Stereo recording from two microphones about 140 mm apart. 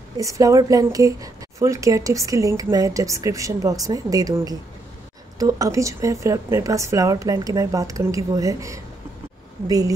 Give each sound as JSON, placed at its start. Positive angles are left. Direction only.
{"t": 0.2, "sound": "a woman's voice", "side_deg": -25}